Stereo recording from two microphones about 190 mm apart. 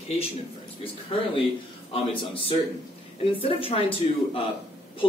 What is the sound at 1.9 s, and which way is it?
Speech, 30° left (ahead or behind).